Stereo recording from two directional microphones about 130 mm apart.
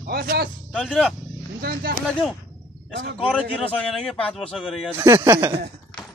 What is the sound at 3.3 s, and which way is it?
Speech, 5° left (ahead or behind).